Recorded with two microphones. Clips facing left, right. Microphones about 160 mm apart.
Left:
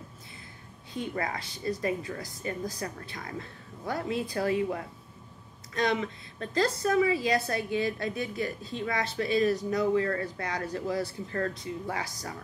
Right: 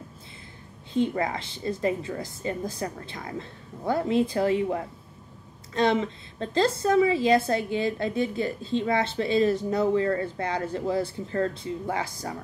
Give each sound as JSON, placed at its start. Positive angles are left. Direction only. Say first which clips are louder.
{"t": 0.9, "sound": "a woman's voice", "louder": "right 7 dB", "side_deg": -25}